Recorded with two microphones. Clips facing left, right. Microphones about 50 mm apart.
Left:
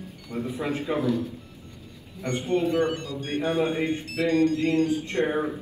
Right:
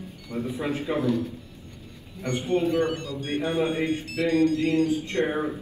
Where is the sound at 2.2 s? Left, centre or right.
Left.